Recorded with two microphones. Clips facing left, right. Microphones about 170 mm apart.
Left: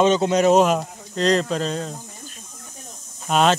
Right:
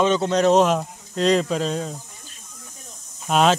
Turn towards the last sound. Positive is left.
turn(degrees=0)  # may be behind; listen again after turning